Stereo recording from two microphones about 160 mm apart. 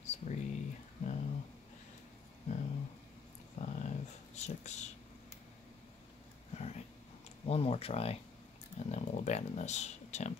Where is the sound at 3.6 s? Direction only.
45° left (ahead or behind).